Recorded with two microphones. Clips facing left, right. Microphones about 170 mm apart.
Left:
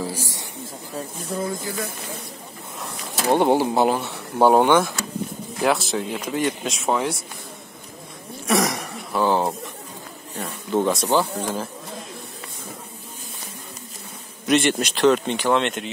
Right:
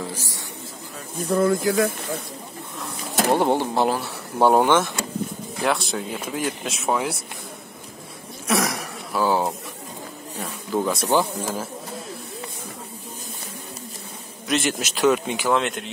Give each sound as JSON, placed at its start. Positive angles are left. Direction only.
{"t": 0.0, "sound": "a man's voice", "side_deg": 10}
{"t": 1.3, "sound": "speech", "side_deg": -70}
{"t": 3.3, "sound": "speech", "side_deg": 0}
{"t": 8.5, "sound": "throat clearing", "side_deg": 0}
{"t": 10.7, "sound": "speech", "side_deg": 0}
{"t": 14.5, "sound": "speech", "side_deg": 0}